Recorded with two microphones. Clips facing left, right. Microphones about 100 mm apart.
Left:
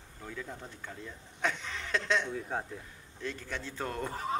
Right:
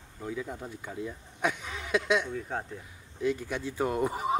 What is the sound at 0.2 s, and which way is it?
Speech, 10° right (ahead or behind).